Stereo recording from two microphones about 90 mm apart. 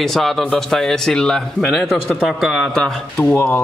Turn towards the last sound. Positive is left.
turn(degrees=20)  # may be behind; listen again after turning